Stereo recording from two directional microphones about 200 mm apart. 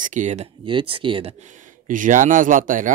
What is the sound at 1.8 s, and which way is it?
Speech, 40° right (ahead or behind).